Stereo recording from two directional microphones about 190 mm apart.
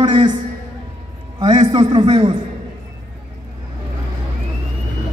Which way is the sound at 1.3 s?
25° right (ahead or behind).